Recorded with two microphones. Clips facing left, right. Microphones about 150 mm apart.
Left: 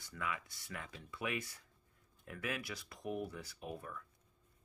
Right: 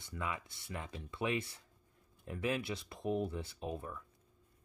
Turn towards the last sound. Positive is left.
turn(degrees=-25)  # may be behind; listen again after turning